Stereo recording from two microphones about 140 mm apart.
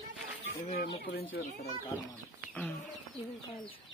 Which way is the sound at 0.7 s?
90° left.